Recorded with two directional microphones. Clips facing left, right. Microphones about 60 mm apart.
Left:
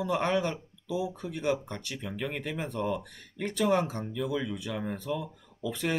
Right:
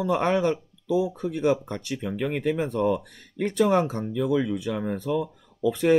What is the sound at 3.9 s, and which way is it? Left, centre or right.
Speech, right.